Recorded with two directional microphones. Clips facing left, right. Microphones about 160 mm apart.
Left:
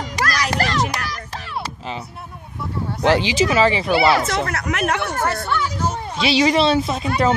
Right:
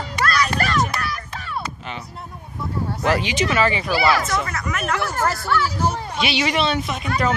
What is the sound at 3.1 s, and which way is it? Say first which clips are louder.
Speech: left 4 dB; 30° left (ahead or behind).